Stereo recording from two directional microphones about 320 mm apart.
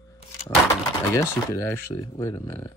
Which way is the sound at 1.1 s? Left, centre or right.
Centre.